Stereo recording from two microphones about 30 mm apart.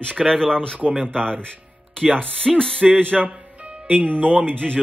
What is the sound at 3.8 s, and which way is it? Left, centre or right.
Speech, right.